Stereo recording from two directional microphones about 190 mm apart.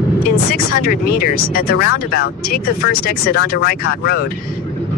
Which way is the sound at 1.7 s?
50° left (ahead or behind).